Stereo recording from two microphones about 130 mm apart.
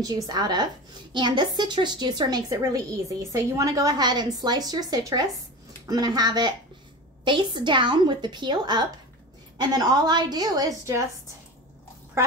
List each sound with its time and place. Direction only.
0.0 s a woman's voice: 30° right (ahead or behind)
12.2 s speech: 20° right (ahead or behind)